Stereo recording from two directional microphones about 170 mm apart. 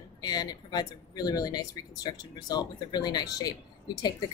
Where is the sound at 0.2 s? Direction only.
25° left (ahead or behind).